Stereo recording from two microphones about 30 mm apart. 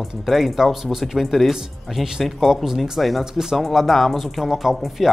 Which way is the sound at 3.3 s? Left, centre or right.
Centre.